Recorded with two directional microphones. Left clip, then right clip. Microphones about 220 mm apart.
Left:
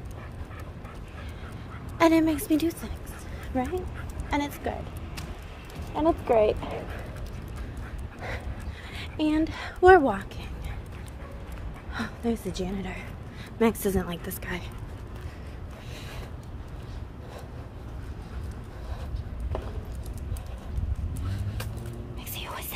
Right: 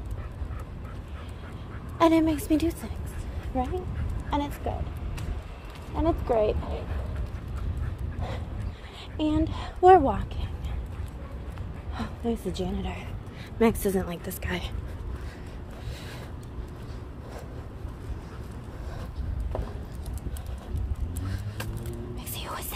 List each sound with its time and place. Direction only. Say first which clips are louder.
2.0 s a woman's voice: even; 5° left (ahead or behind)
3.5 s a woman's voice: even; 15° left (ahead or behind)
5.9 s a woman's voice: left 3 dB; 5° left (ahead or behind)
8.9 s speech: left 1 dB; 10° left (ahead or behind)
11.9 s a sound: left 1 dB; 10° left (ahead or behind)
12.5 s a woman's voice: even; centre (ahead or behind)
22.3 s whispering: even; 10° right (ahead or behind)